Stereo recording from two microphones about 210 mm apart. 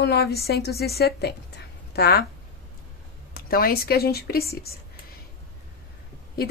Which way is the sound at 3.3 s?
45° left (ahead or behind).